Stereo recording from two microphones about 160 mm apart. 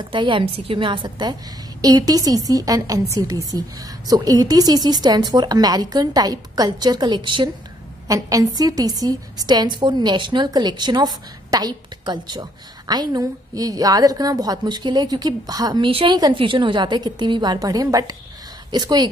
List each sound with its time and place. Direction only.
0.0 s a woman's voice: 30° right (ahead or behind)